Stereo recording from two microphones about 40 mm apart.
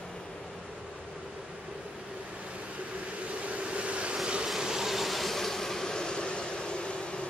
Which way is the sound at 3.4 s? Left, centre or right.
Right.